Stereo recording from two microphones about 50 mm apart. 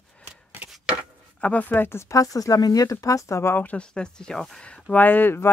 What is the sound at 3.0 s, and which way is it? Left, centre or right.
Speech, left.